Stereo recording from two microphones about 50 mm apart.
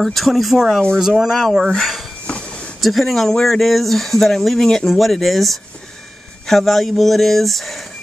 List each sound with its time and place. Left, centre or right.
0.0 s speech: centre
2.2 s a sound: left
2.8 s speech: centre